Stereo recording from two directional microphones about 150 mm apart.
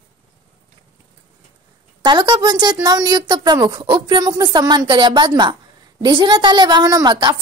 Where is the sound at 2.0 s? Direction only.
30° right (ahead or behind).